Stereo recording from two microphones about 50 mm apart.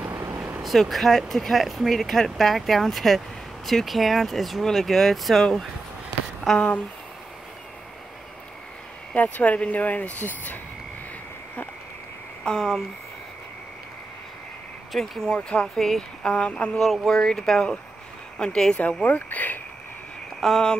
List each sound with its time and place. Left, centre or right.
0.1 s vehicle: right
0.6 s speech: centre
9.1 s speech: left
12.4 s speech: centre
14.9 s speech: centre
15.3 s speech: left
15.7 s speech: centre
16.2 s speech: left
16.7 s speech: centre
19.0 s speech: left
20.3 s speech: centre